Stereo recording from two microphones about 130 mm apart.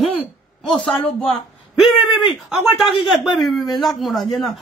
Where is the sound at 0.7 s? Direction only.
45° left (ahead or behind).